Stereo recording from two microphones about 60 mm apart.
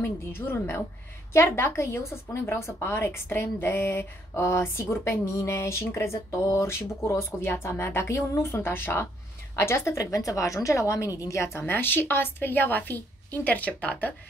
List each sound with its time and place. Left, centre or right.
0.0 s a woman's voice: left
8.5 s a woman's voice: left
10.1 s a woman's voice: left